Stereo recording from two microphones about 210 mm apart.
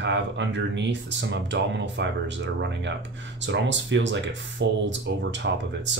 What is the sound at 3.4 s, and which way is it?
Speech, 60° right (ahead or behind).